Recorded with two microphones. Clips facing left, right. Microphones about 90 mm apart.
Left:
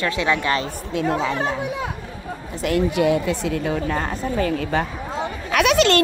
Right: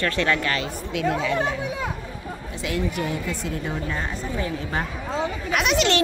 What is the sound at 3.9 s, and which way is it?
Speech, 55° left (ahead or behind).